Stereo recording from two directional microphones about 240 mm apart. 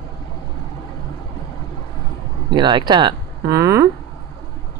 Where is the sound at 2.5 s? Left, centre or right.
Centre.